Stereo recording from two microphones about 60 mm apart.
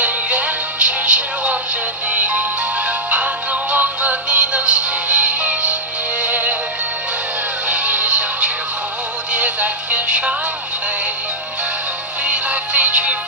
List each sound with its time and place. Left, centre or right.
0.0 s music: right
7.6 s music: right
12.3 s music: right